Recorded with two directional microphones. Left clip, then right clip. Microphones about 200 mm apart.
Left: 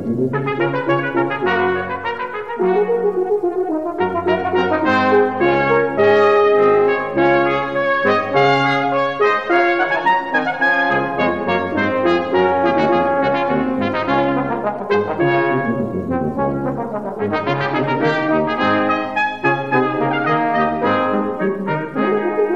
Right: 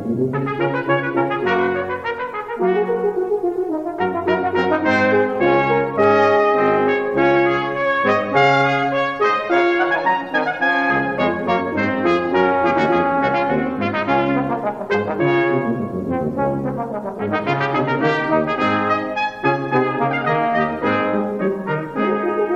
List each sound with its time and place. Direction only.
0.6 s brass instrument: 20° left (ahead or behind)
4.0 s brass instrument: 10° right (ahead or behind)
8.0 s trumpet: 5° right (ahead or behind)
11.1 s brass instrument: 10° right (ahead or behind)
14.9 s brass instrument: 5° right (ahead or behind)
17.5 s brass instrument: 10° right (ahead or behind)